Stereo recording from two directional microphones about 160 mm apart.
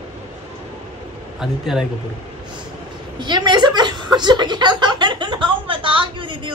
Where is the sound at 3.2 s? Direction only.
25° right (ahead or behind).